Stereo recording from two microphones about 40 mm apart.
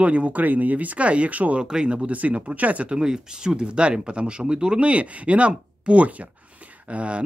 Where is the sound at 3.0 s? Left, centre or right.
Centre.